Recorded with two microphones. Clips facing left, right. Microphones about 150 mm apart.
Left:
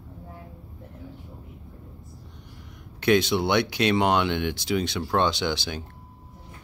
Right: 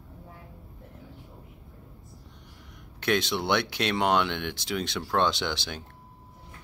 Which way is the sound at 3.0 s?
Centre (ahead or behind).